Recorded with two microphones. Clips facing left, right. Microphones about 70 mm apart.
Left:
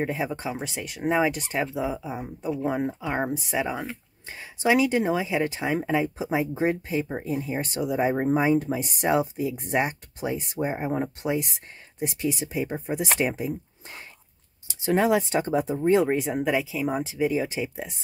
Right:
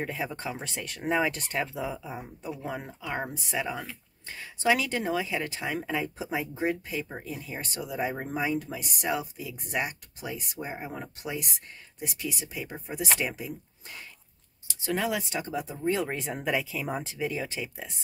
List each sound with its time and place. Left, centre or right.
0.0 s speech: centre
16.1 s speech: centre